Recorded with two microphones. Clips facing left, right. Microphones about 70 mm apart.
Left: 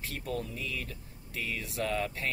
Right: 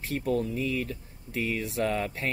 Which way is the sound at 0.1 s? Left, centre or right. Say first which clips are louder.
Right 10 dB; right.